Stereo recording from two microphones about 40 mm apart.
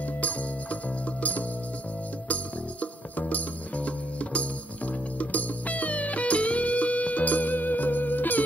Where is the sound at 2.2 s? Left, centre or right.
Left.